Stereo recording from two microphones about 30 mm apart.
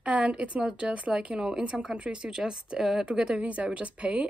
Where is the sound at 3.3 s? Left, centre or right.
Right.